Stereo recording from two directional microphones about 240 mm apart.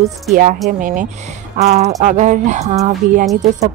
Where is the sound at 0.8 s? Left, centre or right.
Right.